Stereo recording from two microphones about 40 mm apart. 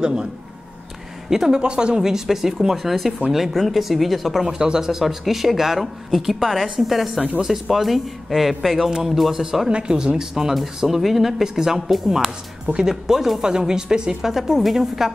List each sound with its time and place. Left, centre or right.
0.0 s speech: right
1.3 s speech: centre
1.6 s speech: right; by 4.5 s centre
4.6 s speech: centre
9.7 s speech: right; by 15.1 s centre